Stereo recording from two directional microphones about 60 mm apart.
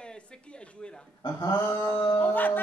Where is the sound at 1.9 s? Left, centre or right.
Left.